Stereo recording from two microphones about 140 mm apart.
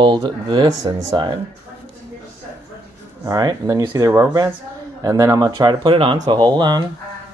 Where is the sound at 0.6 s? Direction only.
25° right (ahead or behind).